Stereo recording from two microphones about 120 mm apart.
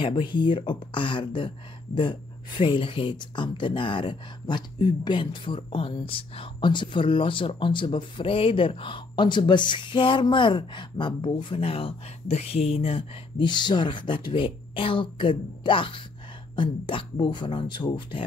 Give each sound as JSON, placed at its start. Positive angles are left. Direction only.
{"t": 0.0, "sound": "speech", "side_deg": 45}
{"t": 13.5, "sound": "speech", "side_deg": 40}